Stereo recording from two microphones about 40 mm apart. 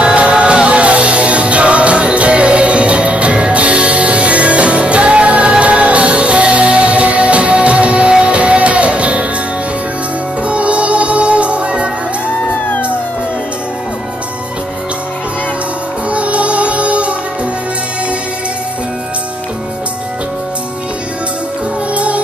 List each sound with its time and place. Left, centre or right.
0.0 s music: right
10.4 s music: right
12.4 s music: left
16.1 s music: right
21.9 s music: right